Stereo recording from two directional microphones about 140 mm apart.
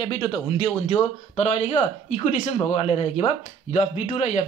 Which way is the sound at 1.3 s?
50° left (ahead or behind).